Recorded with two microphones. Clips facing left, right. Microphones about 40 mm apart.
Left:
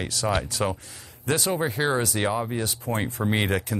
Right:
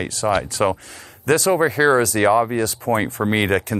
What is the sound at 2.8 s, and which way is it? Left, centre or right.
Speech, right.